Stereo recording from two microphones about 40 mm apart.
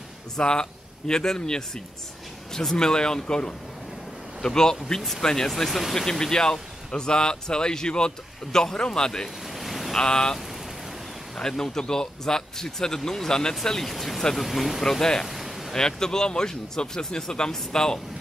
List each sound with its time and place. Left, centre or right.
0.4 s speech: centre
5.5 s speech: centre
5.9 s speech: centre
9.5 s vehicle: centre
9.9 s speech: centre
13.6 s speech: centre
14.8 s speech: centre
15.2 s a sound: centre
15.7 s speech: centre